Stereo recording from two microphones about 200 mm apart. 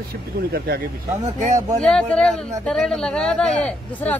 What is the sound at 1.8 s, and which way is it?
Speech, 5° left (ahead or behind).